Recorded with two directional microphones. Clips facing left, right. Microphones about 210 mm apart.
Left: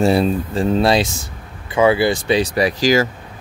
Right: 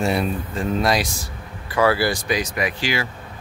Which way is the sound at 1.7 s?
20° left (ahead or behind).